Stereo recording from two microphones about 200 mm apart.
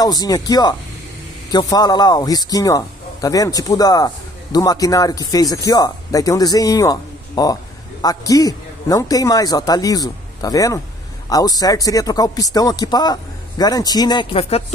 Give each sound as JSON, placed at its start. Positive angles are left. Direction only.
{"t": 0.0, "sound": "a man's voice", "side_deg": 20}